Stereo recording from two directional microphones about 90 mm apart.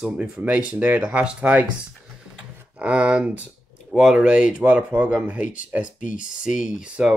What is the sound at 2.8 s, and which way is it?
Speech, 15° right (ahead or behind).